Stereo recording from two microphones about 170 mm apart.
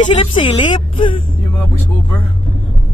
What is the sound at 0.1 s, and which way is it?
Speech, 30° left (ahead or behind).